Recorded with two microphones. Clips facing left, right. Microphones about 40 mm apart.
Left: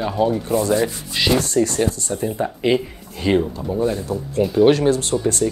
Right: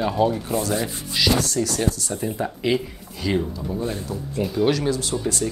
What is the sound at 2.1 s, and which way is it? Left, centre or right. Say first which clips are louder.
Speech: left 4 dB; centre.